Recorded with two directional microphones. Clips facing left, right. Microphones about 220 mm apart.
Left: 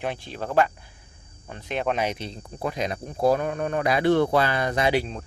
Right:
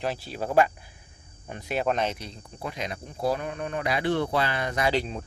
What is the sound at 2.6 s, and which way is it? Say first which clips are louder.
Speech: left 6 dB; 40° left (ahead or behind).